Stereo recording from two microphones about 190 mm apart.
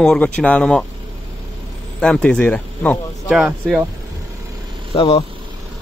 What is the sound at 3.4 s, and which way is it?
Speech, 5° right (ahead or behind).